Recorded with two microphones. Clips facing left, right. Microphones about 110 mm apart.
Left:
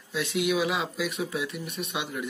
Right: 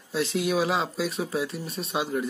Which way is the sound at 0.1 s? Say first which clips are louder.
Right 1 dB; 35° right (ahead or behind).